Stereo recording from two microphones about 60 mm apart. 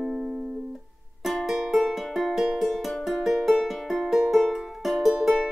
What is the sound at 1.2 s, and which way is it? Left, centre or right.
Music, centre.